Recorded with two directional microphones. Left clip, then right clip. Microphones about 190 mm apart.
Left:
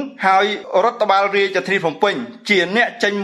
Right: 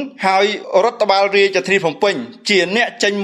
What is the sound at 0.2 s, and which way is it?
A man's voice, 30° right (ahead or behind).